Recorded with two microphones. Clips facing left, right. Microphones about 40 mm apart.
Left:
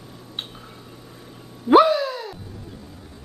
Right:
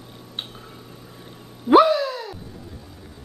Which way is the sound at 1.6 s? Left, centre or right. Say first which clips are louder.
Even; centre.